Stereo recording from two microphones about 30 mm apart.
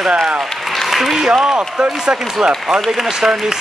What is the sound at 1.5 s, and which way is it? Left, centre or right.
Speech, right.